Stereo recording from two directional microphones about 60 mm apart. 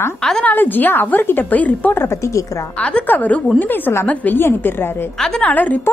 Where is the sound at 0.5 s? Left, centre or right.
Left.